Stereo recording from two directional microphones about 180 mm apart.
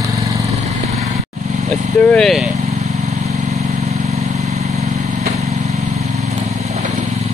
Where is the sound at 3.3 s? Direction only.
35° right (ahead or behind).